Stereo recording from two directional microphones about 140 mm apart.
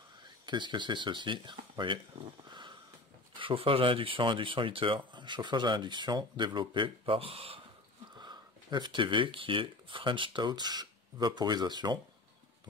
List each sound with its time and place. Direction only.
0.5 s speech: 30° right (ahead or behind)
8.2 s speech: 30° right (ahead or behind)